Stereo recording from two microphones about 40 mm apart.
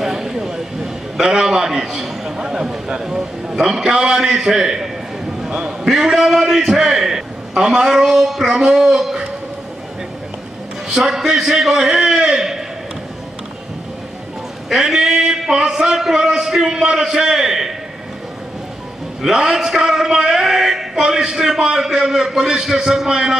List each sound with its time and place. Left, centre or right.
0.0 s a sound: centre
1.2 s a man's voice: centre
5.9 s speech: centre
10.9 s speech: centre
14.7 s speech: centre
19.2 s speech: centre